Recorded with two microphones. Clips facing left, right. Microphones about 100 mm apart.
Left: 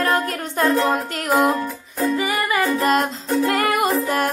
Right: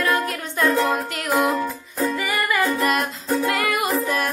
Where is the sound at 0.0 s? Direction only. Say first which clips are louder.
Left 2 dB; 35° left (ahead or behind).